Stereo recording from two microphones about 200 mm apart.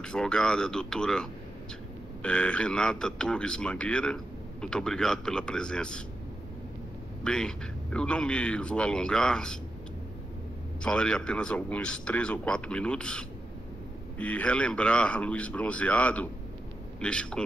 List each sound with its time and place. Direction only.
0.0 s speech: 5° left (ahead or behind)
7.2 s speech: 5° left (ahead or behind)
10.8 s speech: 5° left (ahead or behind)